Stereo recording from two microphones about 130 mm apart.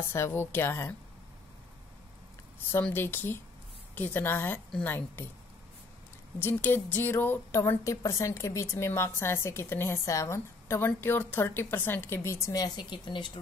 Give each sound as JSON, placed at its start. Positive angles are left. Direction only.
{"t": 0.1, "sound": "a woman's voice", "side_deg": 20}
{"t": 2.8, "sound": "a woman's voice", "side_deg": 15}
{"t": 6.4, "sound": "a woman's voice", "side_deg": 15}